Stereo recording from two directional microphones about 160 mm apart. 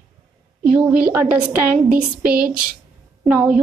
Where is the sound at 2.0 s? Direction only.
5° right (ahead or behind).